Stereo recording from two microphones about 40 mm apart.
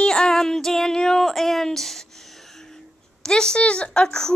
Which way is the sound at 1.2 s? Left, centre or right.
Centre.